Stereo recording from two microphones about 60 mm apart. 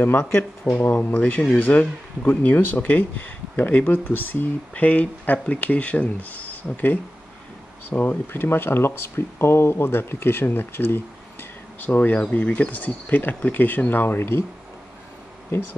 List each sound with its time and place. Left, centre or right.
0.7 s speech: left
1.1 s speech: left
2.2 s speech: left